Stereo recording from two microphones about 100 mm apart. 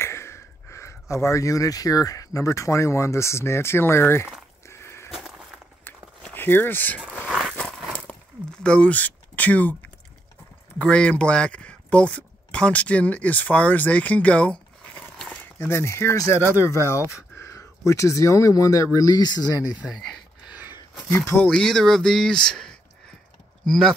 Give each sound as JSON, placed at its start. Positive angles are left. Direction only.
{"t": 0.0, "sound": "speech", "side_deg": 25}
{"t": 6.3, "sound": "speech", "side_deg": 20}
{"t": 7.2, "sound": "a sound", "side_deg": -5}
{"t": 8.5, "sound": "speech", "side_deg": 10}
{"t": 10.8, "sound": "speech", "side_deg": 10}
{"t": 15.6, "sound": "speech", "side_deg": 25}
{"t": 19.8, "sound": "speech", "side_deg": -5}
{"t": 21.1, "sound": "speech", "side_deg": 25}
{"t": 21.4, "sound": "speech", "side_deg": 5}